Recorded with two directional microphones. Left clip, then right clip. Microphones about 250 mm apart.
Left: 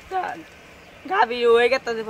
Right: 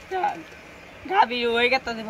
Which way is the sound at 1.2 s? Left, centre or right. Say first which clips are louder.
Left 1 dB; left.